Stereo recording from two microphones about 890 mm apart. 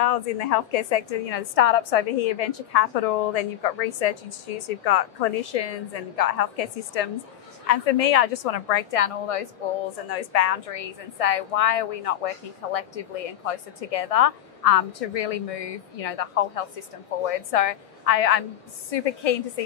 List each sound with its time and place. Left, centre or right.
0.0 s a woman's voice: left